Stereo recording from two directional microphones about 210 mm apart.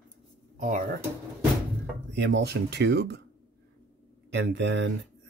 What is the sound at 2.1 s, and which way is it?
Speech, 55° right (ahead or behind).